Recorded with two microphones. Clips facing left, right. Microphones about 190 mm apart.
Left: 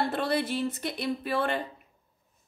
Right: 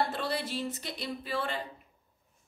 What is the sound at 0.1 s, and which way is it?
A woman's voice, 55° left (ahead or behind).